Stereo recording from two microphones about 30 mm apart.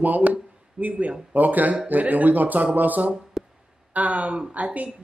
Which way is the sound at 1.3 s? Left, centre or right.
Right.